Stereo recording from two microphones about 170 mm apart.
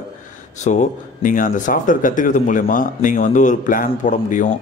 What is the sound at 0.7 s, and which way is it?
Speech, 50° left (ahead or behind).